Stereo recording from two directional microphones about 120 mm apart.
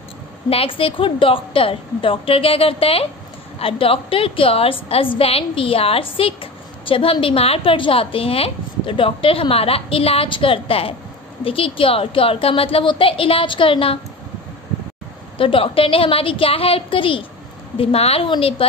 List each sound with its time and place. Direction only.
0.5 s a woman's voice: 50° left (ahead or behind)
15.3 s a woman's voice: 45° left (ahead or behind)